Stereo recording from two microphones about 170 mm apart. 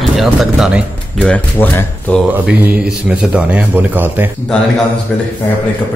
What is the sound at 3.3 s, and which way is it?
Speech, 10° right (ahead or behind).